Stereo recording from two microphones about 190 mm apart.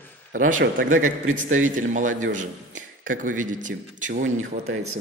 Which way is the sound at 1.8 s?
40° right (ahead or behind).